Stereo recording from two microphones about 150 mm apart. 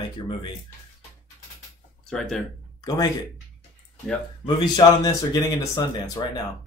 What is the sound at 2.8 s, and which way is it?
Speech, 25° left (ahead or behind).